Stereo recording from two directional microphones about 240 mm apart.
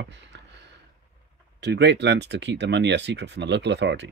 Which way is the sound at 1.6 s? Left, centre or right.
Right.